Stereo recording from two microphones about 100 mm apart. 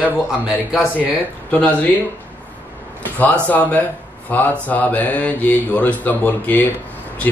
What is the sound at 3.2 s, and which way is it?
Speech, 15° left (ahead or behind).